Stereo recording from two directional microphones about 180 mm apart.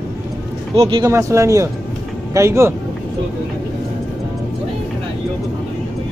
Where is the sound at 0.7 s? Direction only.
30° right (ahead or behind).